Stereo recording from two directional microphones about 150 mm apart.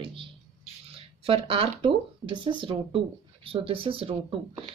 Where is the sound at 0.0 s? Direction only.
35° right (ahead or behind).